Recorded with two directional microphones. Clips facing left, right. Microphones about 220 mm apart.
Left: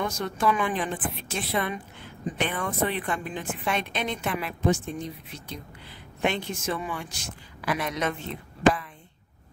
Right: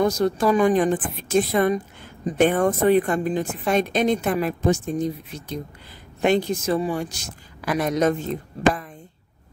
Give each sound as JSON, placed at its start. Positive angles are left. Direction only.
{"t": 0.0, "sound": "a woman's voice", "side_deg": -35}